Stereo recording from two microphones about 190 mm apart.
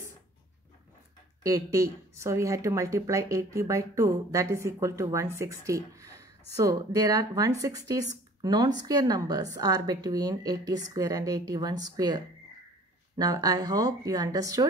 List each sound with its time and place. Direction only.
1.4 s speech: 15° right (ahead or behind)
13.2 s speech: 20° right (ahead or behind)